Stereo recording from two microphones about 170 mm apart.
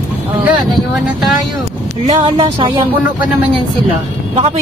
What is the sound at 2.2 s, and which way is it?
Speech, 35° right (ahead or behind).